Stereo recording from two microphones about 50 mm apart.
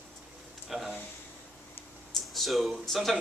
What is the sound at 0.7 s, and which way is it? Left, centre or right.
Speech, centre.